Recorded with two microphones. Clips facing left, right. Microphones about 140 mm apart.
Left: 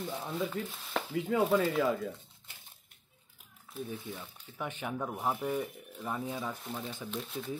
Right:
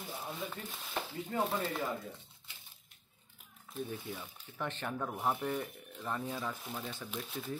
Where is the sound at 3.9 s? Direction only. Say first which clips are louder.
Left 1 dB; 5° left (ahead or behind).